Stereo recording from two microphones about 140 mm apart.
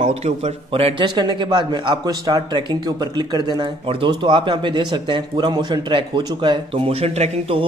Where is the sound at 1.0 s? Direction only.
30° right (ahead or behind).